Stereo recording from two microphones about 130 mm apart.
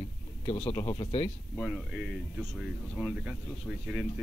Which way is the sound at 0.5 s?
45° left (ahead or behind).